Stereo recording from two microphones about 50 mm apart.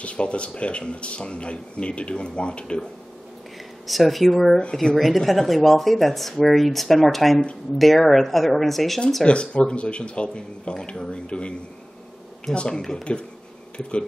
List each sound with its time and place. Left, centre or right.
0.0 s speech: left
3.8 s speech: centre
9.2 s speech: left
12.5 s speech: centre